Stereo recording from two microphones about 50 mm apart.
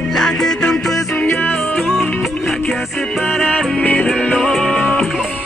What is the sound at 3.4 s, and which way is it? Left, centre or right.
Music, left.